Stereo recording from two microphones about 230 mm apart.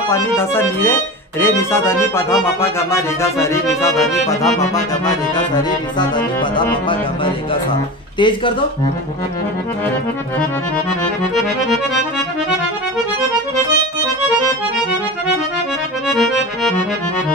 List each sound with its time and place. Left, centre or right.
0.1 s music: centre
5.0 s accordion: centre
8.2 s accordion: left
16.1 s accordion: centre